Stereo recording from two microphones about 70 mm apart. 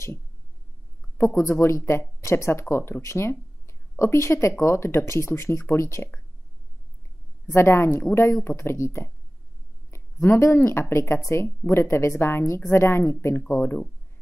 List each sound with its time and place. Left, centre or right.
1.1 s speech: left
7.5 s speech: left